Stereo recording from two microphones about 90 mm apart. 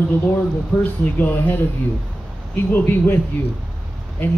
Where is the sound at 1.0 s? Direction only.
20° left (ahead or behind).